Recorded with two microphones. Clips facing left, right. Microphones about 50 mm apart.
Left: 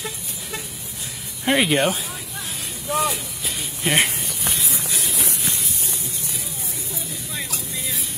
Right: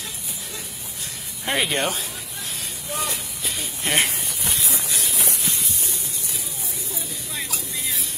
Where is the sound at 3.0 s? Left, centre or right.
Centre.